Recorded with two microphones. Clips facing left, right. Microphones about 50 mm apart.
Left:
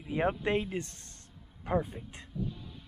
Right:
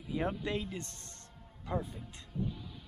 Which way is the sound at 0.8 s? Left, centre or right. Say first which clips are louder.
Right 1 dB; right.